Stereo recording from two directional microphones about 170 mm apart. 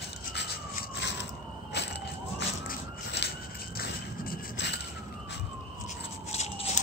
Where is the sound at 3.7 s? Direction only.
60° left (ahead or behind).